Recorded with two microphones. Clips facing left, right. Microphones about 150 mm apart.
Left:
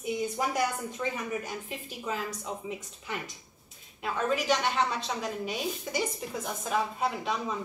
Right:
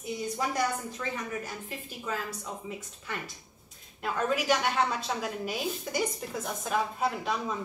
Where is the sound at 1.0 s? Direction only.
20° left (ahead or behind).